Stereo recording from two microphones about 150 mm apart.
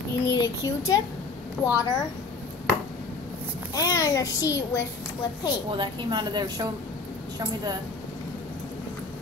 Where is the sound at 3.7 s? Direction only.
20° left (ahead or behind).